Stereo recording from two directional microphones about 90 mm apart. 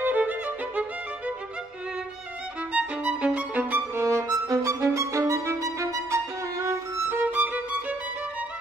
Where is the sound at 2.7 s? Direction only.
15° right (ahead or behind).